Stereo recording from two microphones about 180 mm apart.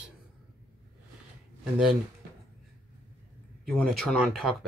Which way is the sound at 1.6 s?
Centre (ahead or behind).